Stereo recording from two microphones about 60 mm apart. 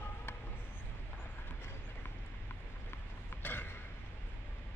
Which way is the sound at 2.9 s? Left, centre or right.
Left.